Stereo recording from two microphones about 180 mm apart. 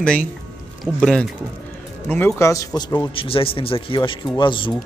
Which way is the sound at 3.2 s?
30° left (ahead or behind).